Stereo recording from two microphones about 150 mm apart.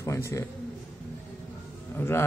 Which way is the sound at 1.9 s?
15° left (ahead or behind).